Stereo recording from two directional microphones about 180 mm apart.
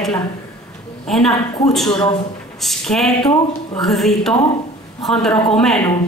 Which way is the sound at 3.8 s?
Centre (ahead or behind).